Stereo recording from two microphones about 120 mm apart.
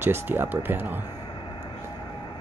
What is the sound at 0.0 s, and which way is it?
Speech, 20° right (ahead or behind).